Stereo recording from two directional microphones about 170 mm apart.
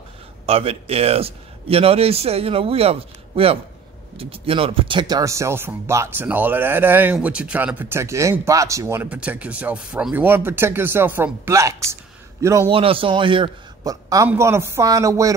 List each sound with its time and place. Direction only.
0.5 s a man's voice: 35° right (ahead or behind); by 12.7 s 15° right (ahead or behind)
12.7 s a man's voice: 30° right (ahead or behind)